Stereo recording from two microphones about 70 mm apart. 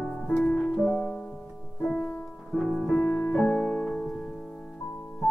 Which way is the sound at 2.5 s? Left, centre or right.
Centre.